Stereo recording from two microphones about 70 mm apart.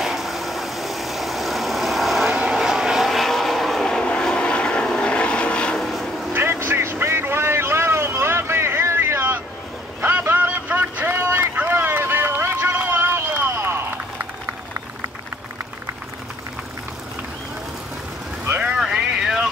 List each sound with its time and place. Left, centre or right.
0.0 s vehicle: centre
5.8 s vehicle: centre
6.3 s vehicle: right
12.7 s run: right
18.9 s vehicle: centre